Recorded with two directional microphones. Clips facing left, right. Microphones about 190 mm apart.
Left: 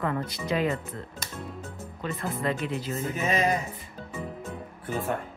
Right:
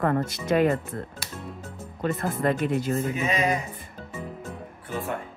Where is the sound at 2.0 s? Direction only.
45° right (ahead or behind).